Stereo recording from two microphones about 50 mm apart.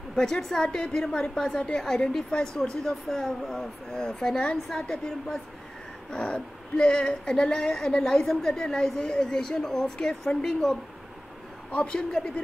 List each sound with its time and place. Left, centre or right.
0.1 s speech: centre
11.7 s a man's voice: left